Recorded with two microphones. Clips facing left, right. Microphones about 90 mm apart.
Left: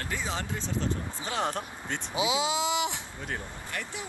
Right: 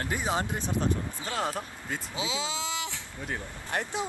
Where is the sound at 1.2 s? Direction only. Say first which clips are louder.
Left 1 dB; 15° left (ahead or behind).